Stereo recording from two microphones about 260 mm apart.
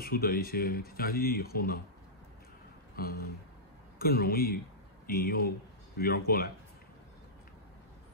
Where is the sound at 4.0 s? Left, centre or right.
Left.